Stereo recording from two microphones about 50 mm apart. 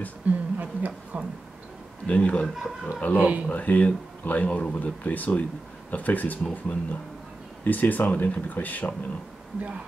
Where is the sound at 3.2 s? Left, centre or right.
Right.